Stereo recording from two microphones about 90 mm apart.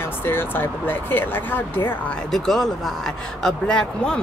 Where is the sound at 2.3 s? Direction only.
5° left (ahead or behind).